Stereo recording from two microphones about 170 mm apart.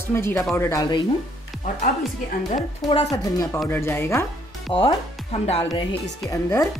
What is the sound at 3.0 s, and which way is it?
A woman's voice, 20° left (ahead or behind).